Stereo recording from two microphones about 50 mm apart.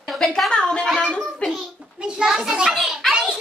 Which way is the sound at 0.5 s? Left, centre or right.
Centre.